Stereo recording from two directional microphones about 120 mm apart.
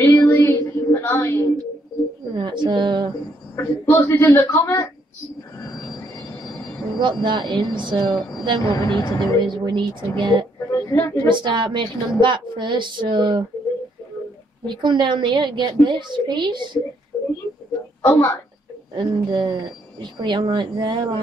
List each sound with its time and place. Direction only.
0.0 s child singing: 20° left (ahead or behind)
0.9 s a sound: 20° left (ahead or behind)
2.3 s speech: 40° right (ahead or behind)
3.5 s a woman's voice: 20° left (ahead or behind)
7.0 s a woman's voice: 40° right (ahead or behind)
8.6 s speech: 30° left (ahead or behind)
9.4 s a woman's voice: 40° right (ahead or behind)
10.7 s speech: 25° left (ahead or behind)
11.2 s a woman's voice: 40° right (ahead or behind)
14.7 s a woman's voice: 40° right (ahead or behind)
18.0 s a woman's voice: 20° left (ahead or behind)
18.9 s a woman's voice: 40° right (ahead or behind)